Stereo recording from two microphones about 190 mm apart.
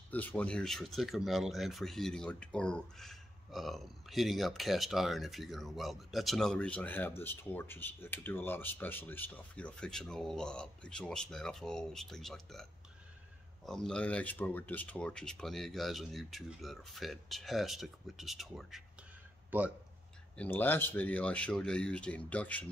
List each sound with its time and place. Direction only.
0.1 s speech: 10° left (ahead or behind)
13.7 s speech: 5° left (ahead or behind)
20.3 s speech: 10° left (ahead or behind)